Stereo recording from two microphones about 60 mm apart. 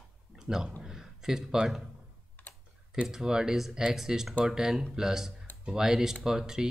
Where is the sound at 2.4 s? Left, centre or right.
Left.